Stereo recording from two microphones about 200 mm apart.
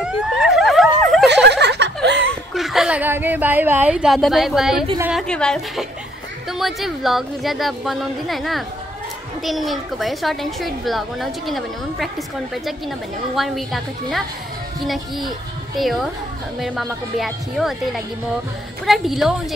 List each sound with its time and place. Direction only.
0.0 s a sound: 5° right (ahead or behind)
1.3 s a sound: 60° right (ahead or behind)
2.2 s a child's voice: centre (ahead or behind)
13.4 s a child's voice: centre (ahead or behind)
15.8 s a child's voice: centre (ahead or behind)
17.2 s a child's voice: centre (ahead or behind)